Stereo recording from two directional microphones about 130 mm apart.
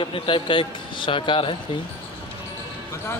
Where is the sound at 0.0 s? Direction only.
40° left (ahead or behind).